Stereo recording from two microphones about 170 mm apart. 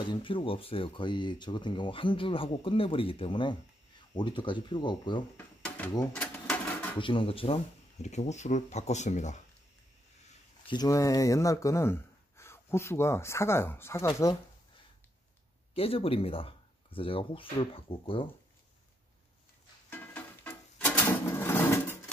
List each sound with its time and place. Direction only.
0.0 s speech: 30° left (ahead or behind)
6.1 s a sound: 10° left (ahead or behind)
7.0 s speech: 30° left (ahead or behind)
10.7 s speech: 20° left (ahead or behind)
15.7 s speech: 35° left (ahead or behind)
19.9 s a sound: 10° left (ahead or behind)